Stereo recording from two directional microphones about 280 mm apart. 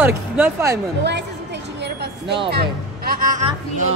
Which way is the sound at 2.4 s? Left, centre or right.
Right.